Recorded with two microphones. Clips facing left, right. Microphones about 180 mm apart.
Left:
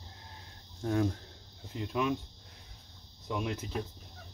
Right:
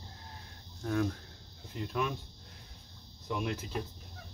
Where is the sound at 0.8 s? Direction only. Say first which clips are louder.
Left 2 dB; 25° left (ahead or behind).